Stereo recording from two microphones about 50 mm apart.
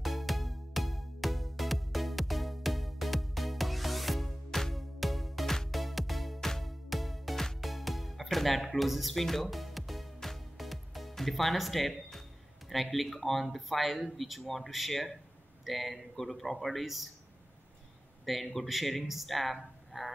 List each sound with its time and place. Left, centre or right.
0.0 s music: centre
15.6 s a man's voice: centre
18.2 s a man's voice: centre